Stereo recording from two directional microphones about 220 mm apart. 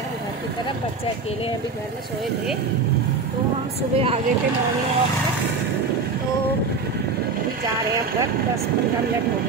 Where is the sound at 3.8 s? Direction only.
25° right (ahead or behind).